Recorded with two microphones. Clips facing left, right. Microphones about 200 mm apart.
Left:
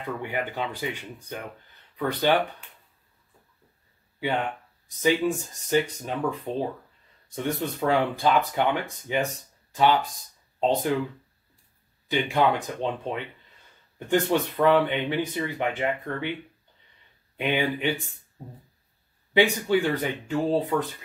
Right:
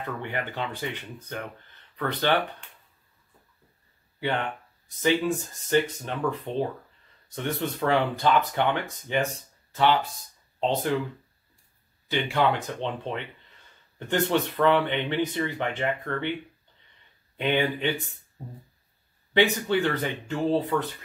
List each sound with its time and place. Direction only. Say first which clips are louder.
0.0 s speech: left 2 dB; 10° left (ahead or behind)
4.2 s speech: left 1 dB; 10° left (ahead or behind)
12.1 s speech: left 1 dB; 15° left (ahead or behind)
17.4 s speech: right 1 dB; 10° left (ahead or behind)
19.3 s speech: left 1 dB; 10° left (ahead or behind)